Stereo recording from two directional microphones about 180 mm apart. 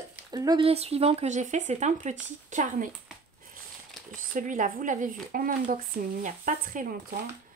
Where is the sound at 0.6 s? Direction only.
35° right (ahead or behind).